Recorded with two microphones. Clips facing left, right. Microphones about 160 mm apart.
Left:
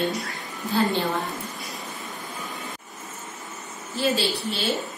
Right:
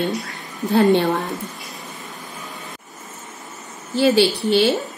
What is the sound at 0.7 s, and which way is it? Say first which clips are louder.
Speech: right 8 dB; 65° right (ahead or behind).